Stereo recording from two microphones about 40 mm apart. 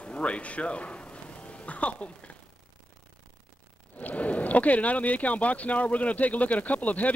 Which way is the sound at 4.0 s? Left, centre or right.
Left.